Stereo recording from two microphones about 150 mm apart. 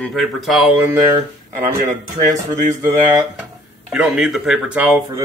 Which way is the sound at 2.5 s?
20° right (ahead or behind).